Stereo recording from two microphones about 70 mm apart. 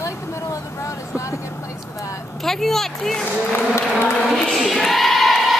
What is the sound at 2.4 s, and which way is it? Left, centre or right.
Speech, centre.